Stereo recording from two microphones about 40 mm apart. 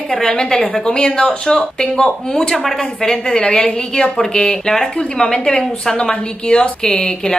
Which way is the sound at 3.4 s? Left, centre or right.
Left.